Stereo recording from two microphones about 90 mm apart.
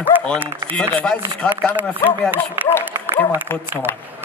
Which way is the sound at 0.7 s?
20° left (ahead or behind).